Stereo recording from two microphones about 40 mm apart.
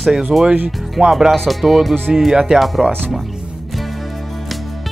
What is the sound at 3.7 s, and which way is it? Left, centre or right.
Music, centre.